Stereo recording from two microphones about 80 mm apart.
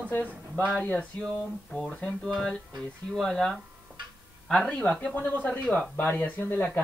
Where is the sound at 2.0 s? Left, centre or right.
Centre.